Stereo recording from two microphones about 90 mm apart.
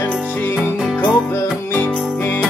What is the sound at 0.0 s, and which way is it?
Music, 15° left (ahead or behind).